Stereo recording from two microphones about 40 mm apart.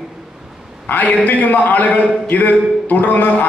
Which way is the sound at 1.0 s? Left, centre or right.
Left.